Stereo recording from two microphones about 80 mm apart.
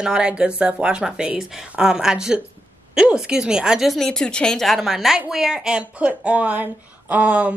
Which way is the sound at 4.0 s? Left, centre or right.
Centre.